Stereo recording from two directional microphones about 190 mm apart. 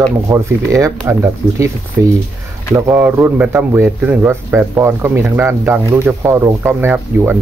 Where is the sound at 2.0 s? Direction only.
65° right (ahead or behind).